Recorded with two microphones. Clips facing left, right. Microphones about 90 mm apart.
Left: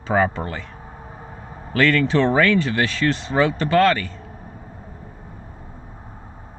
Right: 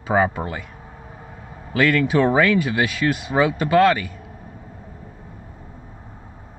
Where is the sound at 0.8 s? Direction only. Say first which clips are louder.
Left 2 dB; 35° left (ahead or behind).